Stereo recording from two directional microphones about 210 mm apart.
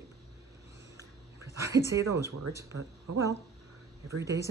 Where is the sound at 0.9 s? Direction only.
15° right (ahead or behind).